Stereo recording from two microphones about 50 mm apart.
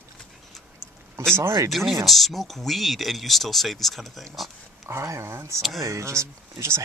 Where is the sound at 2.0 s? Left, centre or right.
Centre.